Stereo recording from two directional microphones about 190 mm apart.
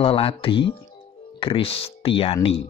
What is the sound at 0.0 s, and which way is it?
Speech, 30° left (ahead or behind).